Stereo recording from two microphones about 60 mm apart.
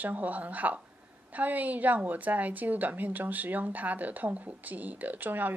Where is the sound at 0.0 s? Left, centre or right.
Right.